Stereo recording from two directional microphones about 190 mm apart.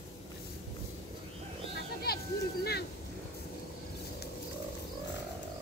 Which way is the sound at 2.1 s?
55° left (ahead or behind).